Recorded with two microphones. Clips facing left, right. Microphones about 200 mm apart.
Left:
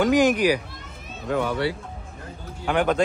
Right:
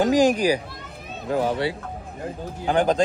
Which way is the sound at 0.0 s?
35° right (ahead or behind).